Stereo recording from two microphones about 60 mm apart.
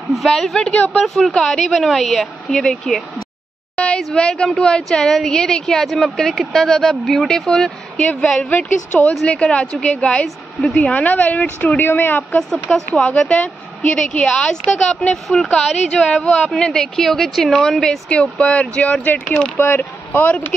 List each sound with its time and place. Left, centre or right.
0.1 s a woman's voice: centre
8.0 s a woman's voice: left; by 10.9 s centre
10.9 s a woman's voice: left
13.0 s a woman's voice: centre
14.2 s a woman's voice: centre
15.9 s a woman's voice: centre
18.5 s a woman's voice: left